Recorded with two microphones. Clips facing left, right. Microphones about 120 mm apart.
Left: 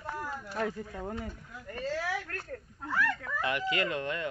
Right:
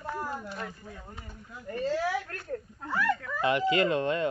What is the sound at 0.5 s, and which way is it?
Speech, 90° left.